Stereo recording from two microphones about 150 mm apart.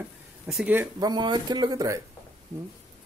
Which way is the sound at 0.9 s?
30° right (ahead or behind).